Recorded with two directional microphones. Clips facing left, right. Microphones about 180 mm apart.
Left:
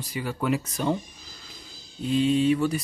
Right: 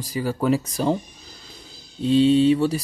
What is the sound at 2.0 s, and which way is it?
Speech, 30° right (ahead or behind).